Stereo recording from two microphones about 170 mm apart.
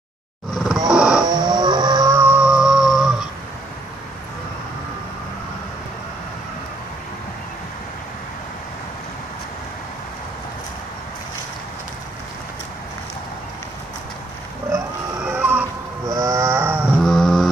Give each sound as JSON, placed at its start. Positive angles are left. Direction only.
{"t": 0.8, "sound": "wild animals", "side_deg": -5}
{"t": 1.2, "sound": "livestock", "side_deg": -25}
{"t": 15.2, "sound": "music", "side_deg": -10}
{"t": 16.1, "sound": "livestock", "side_deg": -20}
{"t": 17.0, "sound": "vehicle", "side_deg": 0}